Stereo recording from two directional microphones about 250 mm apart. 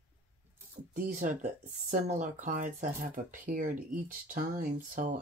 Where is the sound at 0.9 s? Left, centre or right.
Right.